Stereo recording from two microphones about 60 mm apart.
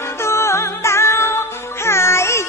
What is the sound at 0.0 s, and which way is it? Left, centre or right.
Music, left.